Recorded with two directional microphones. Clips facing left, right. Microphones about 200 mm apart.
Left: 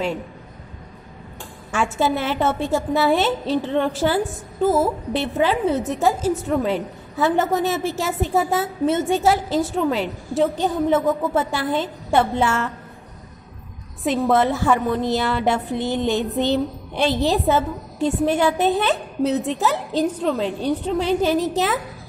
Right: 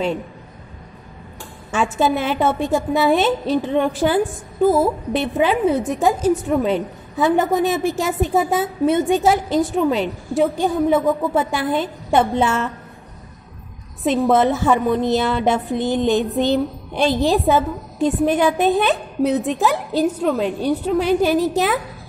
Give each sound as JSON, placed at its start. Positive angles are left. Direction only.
{"t": 1.7, "sound": "a woman's voice", "side_deg": -20}
{"t": 14.0, "sound": "a woman's voice", "side_deg": -20}